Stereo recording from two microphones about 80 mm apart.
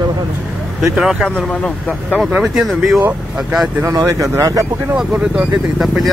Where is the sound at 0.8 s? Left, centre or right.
Centre.